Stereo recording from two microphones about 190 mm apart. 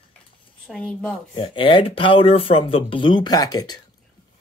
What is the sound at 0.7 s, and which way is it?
Speech, 5° left (ahead or behind).